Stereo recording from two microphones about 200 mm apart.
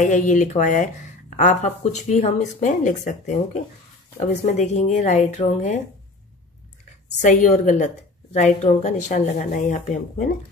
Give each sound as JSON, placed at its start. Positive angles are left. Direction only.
{"t": 0.0, "sound": "a woman's voice", "side_deg": 40}
{"t": 7.2, "sound": "a woman's voice", "side_deg": 40}